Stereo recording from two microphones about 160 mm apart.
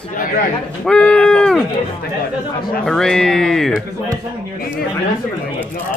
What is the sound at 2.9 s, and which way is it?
Speech, 5° left (ahead or behind).